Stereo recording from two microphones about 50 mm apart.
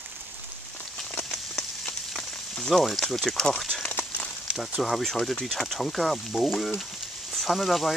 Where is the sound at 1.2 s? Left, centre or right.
Centre.